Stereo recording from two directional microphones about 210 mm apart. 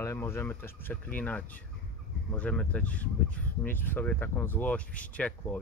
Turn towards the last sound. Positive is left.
turn(degrees=5)  # may be behind; listen again after turning